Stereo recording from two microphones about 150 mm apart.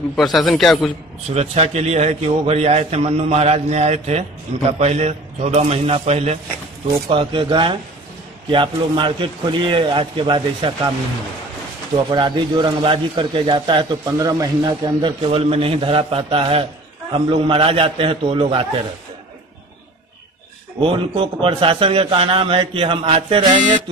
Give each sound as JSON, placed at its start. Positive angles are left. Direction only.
{"t": 0.1, "sound": "a man's voice", "side_deg": 0}
{"t": 1.3, "sound": "a man's voice", "side_deg": -45}
{"t": 7.1, "sound": "a man's voice", "side_deg": -35}
{"t": 12.1, "sound": "a man's voice", "side_deg": -30}
{"t": 14.0, "sound": "a man's voice", "side_deg": -25}
{"t": 20.8, "sound": "a man's voice", "side_deg": -35}
{"t": 23.5, "sound": "speech", "side_deg": -55}